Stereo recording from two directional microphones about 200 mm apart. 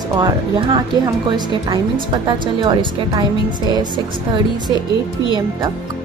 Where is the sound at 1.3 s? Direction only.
25° right (ahead or behind).